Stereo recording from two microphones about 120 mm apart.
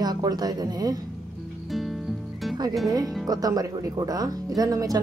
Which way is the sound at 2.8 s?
35° right (ahead or behind).